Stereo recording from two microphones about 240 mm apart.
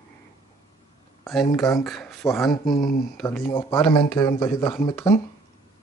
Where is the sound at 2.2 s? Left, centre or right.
Centre.